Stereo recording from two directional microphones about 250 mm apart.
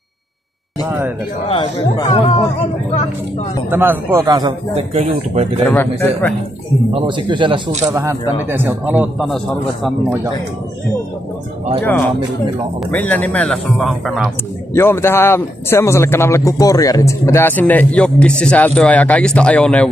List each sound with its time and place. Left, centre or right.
0.8 s a man's voice: centre
1.5 s speech: centre
3.7 s a man's voice: centre; by 5.5 s right
5.7 s speech: centre
6.9 s speech: centre
7.9 s a man's voice: centre
12.9 s speech: centre
14.7 s a man's voice: centre